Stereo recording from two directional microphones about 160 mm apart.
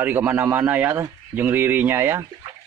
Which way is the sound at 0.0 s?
15° right (ahead or behind).